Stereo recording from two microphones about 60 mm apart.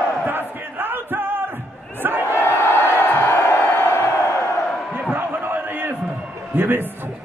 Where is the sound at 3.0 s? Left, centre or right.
Left.